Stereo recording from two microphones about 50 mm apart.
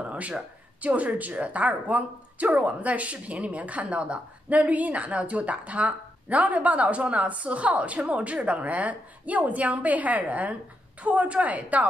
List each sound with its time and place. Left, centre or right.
0.0 s speech: right